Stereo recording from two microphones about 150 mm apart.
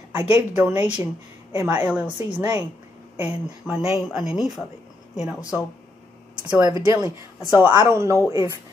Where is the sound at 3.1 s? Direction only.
10° right (ahead or behind).